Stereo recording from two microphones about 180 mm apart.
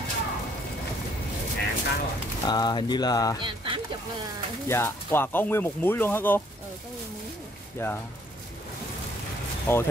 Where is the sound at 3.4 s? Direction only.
30° right (ahead or behind).